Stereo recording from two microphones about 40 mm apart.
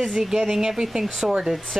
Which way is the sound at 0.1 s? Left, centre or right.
Centre.